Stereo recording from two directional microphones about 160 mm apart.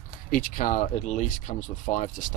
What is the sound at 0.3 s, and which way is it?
Speech, 60° left (ahead or behind).